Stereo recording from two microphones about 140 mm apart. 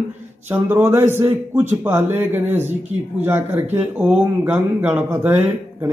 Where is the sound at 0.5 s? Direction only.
15° right (ahead or behind).